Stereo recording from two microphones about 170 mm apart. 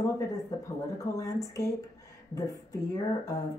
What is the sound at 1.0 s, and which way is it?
Speech, 20° left (ahead or behind).